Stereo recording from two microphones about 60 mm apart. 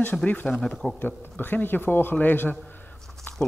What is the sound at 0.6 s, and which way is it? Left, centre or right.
Speech, centre.